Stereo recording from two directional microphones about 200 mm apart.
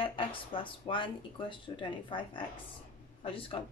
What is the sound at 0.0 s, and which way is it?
A woman's voice, 25° left (ahead or behind).